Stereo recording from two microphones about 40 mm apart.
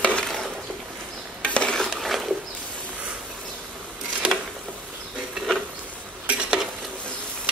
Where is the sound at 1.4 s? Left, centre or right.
Left.